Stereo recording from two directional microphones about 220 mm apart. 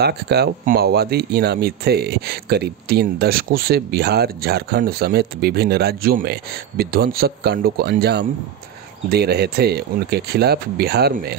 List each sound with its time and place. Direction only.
0.0 s speech: 45° right (ahead or behind)